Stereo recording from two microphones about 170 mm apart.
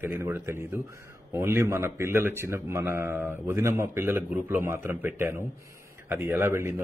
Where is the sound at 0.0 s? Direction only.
15° right (ahead or behind).